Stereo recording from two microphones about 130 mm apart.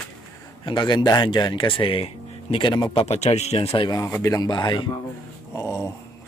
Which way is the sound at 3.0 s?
60° left (ahead or behind).